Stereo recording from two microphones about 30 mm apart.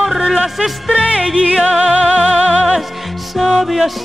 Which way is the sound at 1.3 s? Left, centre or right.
Right.